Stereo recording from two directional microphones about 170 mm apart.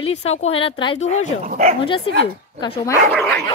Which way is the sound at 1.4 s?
50° right (ahead or behind).